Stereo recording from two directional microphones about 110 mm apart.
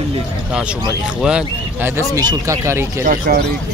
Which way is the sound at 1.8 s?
25° right (ahead or behind).